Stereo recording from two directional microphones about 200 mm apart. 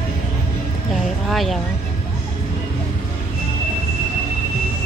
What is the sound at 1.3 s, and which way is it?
Speech, centre (ahead or behind).